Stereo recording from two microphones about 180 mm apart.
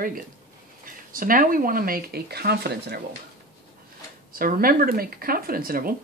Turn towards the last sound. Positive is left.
turn(degrees=-55)  # may be behind; listen again after turning